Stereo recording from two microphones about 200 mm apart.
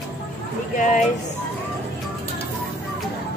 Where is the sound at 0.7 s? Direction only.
40° left (ahead or behind).